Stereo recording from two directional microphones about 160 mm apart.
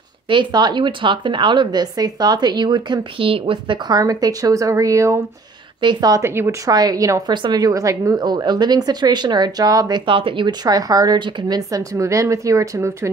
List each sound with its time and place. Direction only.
0.3 s a woman's voice: 30° right (ahead or behind)